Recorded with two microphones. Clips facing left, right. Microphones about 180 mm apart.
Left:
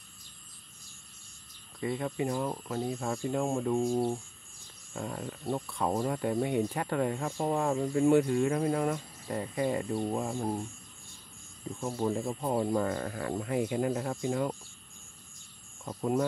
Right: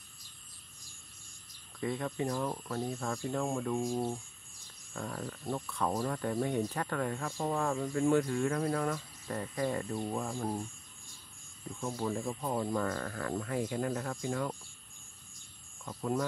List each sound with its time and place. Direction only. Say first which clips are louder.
1.8 s speech: left 2 dB; 5° left (ahead or behind)
11.7 s speech: left 4 dB; 20° left (ahead or behind)
15.8 s speech: left 4 dB; 25° left (ahead or behind)